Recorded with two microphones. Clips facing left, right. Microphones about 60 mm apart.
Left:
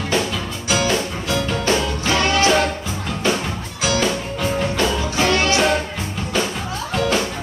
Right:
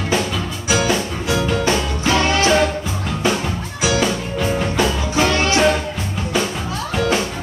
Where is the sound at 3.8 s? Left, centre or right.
Centre.